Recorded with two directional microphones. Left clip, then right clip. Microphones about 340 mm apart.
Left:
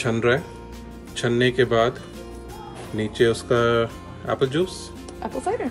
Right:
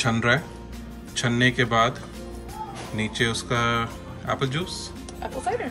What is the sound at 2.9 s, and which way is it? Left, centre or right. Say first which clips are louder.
Speech: left 5 dB; centre.